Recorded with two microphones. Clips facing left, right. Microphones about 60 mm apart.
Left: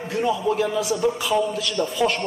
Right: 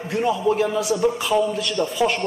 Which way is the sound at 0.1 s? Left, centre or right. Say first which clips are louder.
Right 2 dB; centre.